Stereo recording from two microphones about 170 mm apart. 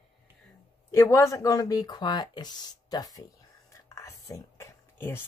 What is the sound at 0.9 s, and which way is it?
Speech, 15° left (ahead or behind).